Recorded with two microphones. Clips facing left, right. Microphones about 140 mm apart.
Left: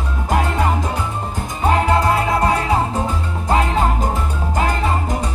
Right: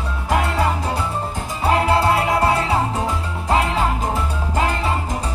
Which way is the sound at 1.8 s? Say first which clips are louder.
Even; 30° right (ahead or behind).